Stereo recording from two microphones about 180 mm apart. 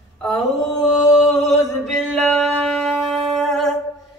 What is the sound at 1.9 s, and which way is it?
Singing, centre (ahead or behind).